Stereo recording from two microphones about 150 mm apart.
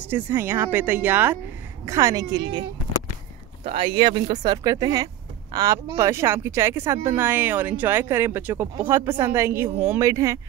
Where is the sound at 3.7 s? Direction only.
35° right (ahead or behind).